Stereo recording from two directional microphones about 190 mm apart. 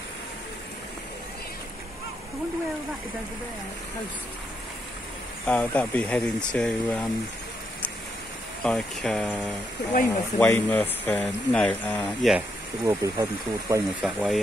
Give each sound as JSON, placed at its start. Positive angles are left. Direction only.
{"t": 5.5, "sound": "speech", "side_deg": 10}
{"t": 8.6, "sound": "speech", "side_deg": 5}
{"t": 10.4, "sound": "speech", "side_deg": 10}
{"t": 12.8, "sound": "speech", "side_deg": -15}
{"t": 14.0, "sound": "speech", "side_deg": 0}